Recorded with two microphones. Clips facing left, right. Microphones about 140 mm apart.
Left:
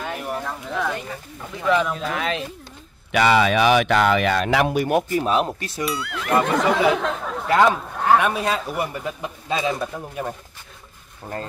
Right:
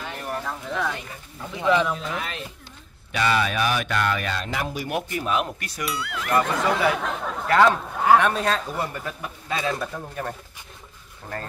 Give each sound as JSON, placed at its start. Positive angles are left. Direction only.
{"t": 0.2, "sound": "speech", "side_deg": 5}
{"t": 2.0, "sound": "speech", "side_deg": 75}
{"t": 5.1, "sound": "speech", "side_deg": 35}
{"t": 5.9, "sound": "speech", "side_deg": 0}
{"t": 6.3, "sound": "a sound", "side_deg": 20}
{"t": 7.1, "sound": "a sound", "side_deg": 0}
{"t": 7.4, "sound": "speech", "side_deg": 15}
{"t": 7.7, "sound": "a man's voice", "side_deg": 0}